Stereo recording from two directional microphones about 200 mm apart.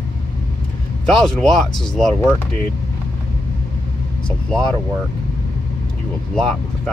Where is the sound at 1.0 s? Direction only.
Centre (ahead or behind).